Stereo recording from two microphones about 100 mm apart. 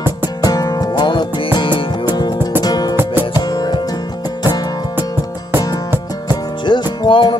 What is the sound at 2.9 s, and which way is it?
Music, 20° right (ahead or behind).